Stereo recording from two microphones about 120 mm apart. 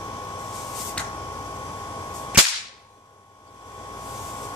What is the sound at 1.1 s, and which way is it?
Cap gun, 25° left (ahead or behind).